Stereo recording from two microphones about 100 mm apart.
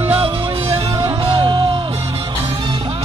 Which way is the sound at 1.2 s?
55° right (ahead or behind).